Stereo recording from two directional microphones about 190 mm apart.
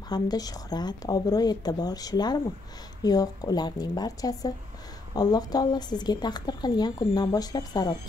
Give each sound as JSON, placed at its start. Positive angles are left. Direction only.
{"t": 0.1, "sound": "a woman's voice", "side_deg": 20}